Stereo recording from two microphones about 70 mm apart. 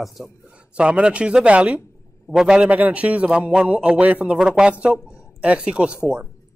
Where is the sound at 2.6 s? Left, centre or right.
Right.